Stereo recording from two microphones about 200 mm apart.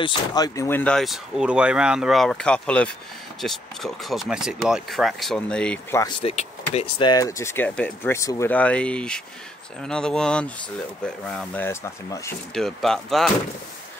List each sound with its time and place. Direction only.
0.0 s speech: 20° left (ahead or behind)
6.2 s speech: 30° left (ahead or behind); by 12.4 s 15° left (ahead or behind)
12.5 s speech: centre (ahead or behind)